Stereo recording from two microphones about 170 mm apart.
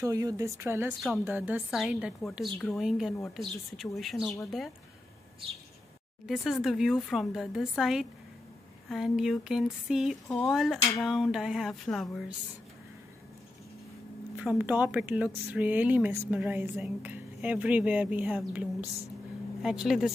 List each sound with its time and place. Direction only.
0.0 s a woman's voice: 20° right (ahead or behind); by 4.4 s centre (ahead or behind)
6.2 s a woman's voice: centre (ahead or behind)
14.3 s a woman's voice: 5° right (ahead or behind)